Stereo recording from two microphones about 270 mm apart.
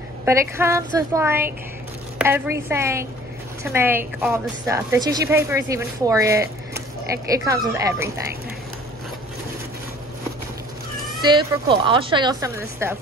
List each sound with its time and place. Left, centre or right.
0.2 s a woman's voice: centre
11.7 s a woman's voice: centre